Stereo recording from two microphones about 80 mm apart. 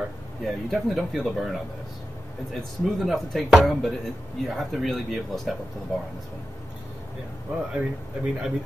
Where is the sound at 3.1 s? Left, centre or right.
Centre.